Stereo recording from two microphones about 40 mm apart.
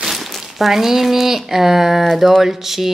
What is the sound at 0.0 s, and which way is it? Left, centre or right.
Speech, centre.